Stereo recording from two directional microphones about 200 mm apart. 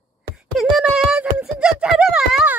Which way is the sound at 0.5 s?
Centre (ahead or behind).